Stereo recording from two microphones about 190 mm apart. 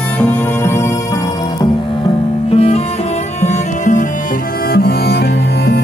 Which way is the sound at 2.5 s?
30° left (ahead or behind).